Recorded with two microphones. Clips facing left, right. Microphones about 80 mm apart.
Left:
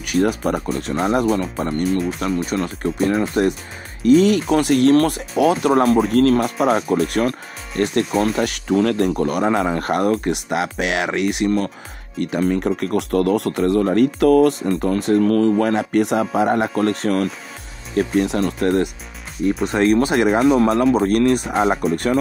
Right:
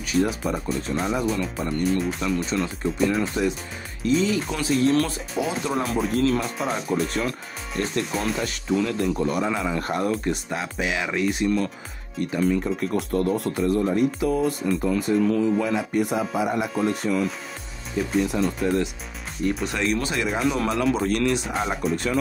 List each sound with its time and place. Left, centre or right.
0.0 s speech: left
1.9 s speech: centre
2.2 s speech: left
4.0 s speech: left
11.4 s speech: left
12.2 s speech: left
17.9 s speech: left
19.6 s speech: left